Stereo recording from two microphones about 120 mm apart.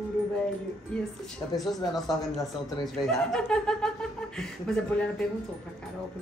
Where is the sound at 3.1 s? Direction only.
5° left (ahead or behind).